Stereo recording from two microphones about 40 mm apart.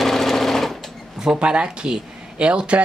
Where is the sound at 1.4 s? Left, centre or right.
Right.